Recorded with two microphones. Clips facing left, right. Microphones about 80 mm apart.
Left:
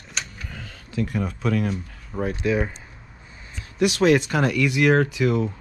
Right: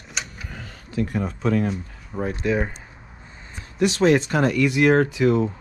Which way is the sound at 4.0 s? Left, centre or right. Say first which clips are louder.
Right 1 dB; right.